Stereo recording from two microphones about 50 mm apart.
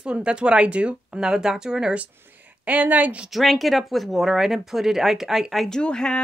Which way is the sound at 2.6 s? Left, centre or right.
Right.